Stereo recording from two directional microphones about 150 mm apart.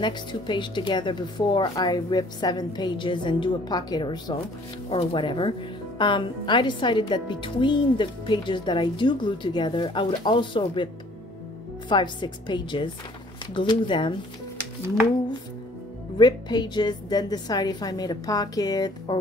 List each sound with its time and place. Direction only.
0.0 s speech: 30° left (ahead or behind)
4.8 s speech: 40° left (ahead or behind)
11.9 s speech: 30° left (ahead or behind)
16.2 s a woman's voice: 30° left (ahead or behind)